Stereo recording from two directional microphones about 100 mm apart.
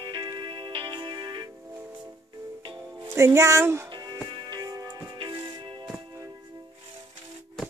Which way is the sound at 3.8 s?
45° right (ahead or behind).